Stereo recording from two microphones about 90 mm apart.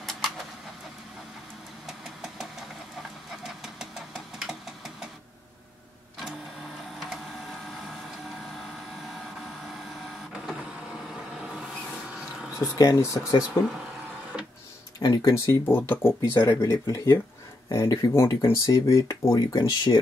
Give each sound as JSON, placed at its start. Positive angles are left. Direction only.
{"t": 1.9, "sound": "engine", "side_deg": -5}
{"t": 7.0, "sound": "printer", "side_deg": 0}
{"t": 7.8, "sound": "vehicle", "side_deg": 0}
{"t": 10.4, "sound": "vehicle", "side_deg": -5}
{"t": 12.1, "sound": "a sound", "side_deg": -5}
{"t": 12.5, "sound": "speech", "side_deg": 35}
{"t": 14.3, "sound": "printer", "side_deg": 5}
{"t": 15.0, "sound": "speech", "side_deg": 45}
{"t": 15.4, "sound": "speech", "side_deg": 25}